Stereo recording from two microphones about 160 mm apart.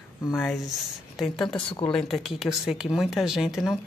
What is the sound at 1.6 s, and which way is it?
Speech, 30° left (ahead or behind).